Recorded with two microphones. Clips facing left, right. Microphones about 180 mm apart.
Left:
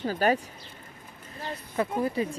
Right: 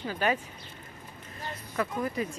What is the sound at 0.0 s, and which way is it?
Speech, 40° left (ahead or behind).